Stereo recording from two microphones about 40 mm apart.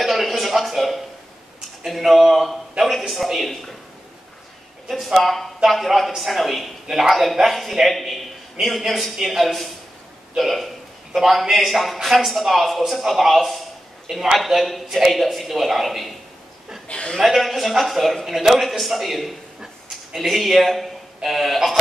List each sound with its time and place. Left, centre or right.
0.0 s music: centre
2.0 s a sound: centre
2.8 s a man's voice: centre
4.8 s a man's voice: centre
16.8 s chuckle: left
17.2 s a man's voice: centre